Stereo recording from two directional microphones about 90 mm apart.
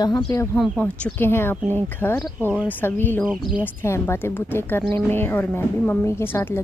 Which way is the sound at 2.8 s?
25° left (ahead or behind).